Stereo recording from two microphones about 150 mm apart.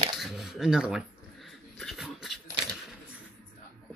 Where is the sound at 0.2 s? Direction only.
5° right (ahead or behind).